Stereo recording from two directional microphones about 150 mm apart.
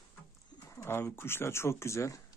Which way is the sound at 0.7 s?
20° left (ahead or behind).